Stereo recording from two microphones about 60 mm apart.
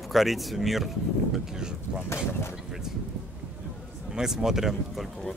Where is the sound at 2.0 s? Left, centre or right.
Left.